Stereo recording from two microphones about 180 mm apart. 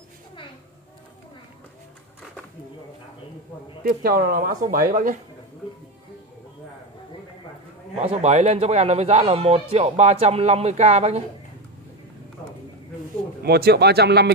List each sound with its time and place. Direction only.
3.8 s speech: 55° right (ahead or behind)
8.0 s a man's voice: 35° right (ahead or behind)
13.4 s a man's voice: 60° right (ahead or behind)